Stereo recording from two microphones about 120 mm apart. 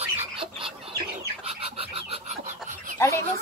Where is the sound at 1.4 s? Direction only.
55° right (ahead or behind).